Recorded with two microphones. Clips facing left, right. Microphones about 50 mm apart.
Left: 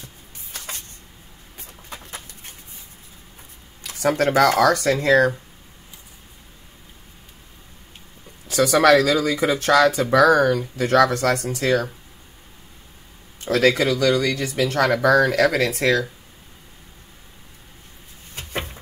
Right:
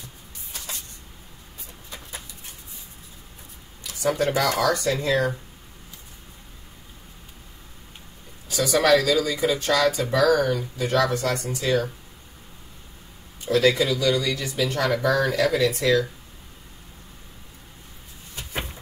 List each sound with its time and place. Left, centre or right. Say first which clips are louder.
1.9 s dog: left 2 dB; left
4.2 s speech: left 7 dB; left
8.5 s a sound: left 6 dB; left
8.8 s speech: left 3 dB; left
13.5 s speech: left 2 dB; left
15.0 s speech: left 7 dB; left
15.4 s speech: left 2 dB; left
18.3 s a sound: left 4 dB; left